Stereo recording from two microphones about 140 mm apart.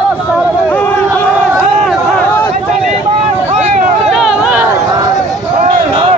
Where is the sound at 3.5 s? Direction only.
55° right (ahead or behind).